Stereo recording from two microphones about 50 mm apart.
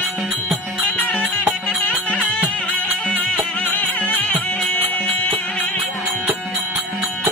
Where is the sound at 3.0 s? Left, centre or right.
Left.